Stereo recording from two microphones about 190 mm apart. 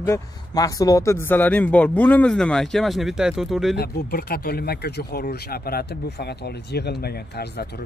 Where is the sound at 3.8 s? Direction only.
55° left (ahead or behind).